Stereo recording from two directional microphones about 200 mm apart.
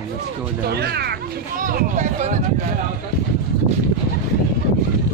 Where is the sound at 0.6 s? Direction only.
55° right (ahead or behind).